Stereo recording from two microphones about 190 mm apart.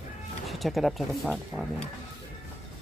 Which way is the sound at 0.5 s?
Centre (ahead or behind).